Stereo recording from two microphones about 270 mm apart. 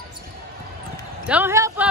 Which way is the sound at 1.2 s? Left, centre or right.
Centre.